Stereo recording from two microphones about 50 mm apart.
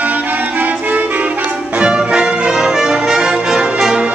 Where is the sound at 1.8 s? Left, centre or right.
Centre.